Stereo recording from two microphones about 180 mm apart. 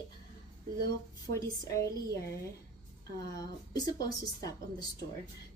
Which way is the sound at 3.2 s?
20° left (ahead or behind).